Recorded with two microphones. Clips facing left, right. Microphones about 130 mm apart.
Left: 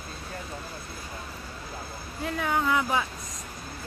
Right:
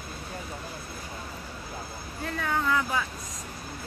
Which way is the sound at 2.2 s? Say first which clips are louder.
Left 2 dB; 15° left (ahead or behind).